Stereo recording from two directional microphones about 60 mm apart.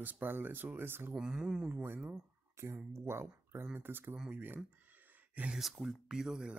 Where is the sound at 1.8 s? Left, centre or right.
Right.